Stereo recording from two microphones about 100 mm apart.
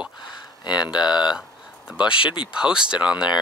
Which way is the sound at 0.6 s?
45° left (ahead or behind).